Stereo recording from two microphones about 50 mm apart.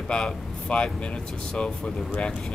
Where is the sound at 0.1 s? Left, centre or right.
Left.